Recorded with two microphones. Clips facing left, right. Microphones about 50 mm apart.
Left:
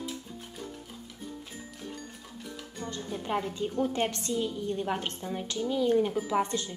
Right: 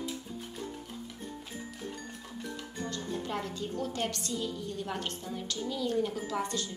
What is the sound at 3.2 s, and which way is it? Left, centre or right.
A woman's voice, left.